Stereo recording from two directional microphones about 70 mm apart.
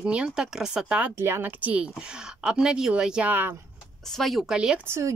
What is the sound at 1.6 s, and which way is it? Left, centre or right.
Speech, centre.